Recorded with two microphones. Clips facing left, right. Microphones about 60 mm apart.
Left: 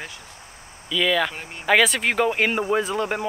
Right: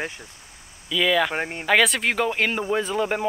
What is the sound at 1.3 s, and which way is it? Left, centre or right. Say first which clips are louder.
Speech: right 9 dB; right.